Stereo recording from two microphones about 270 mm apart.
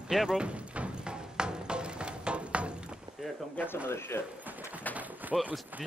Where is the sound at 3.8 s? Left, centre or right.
Centre.